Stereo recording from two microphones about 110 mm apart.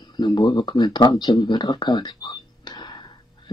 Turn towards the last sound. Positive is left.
turn(degrees=45)  # may be behind; listen again after turning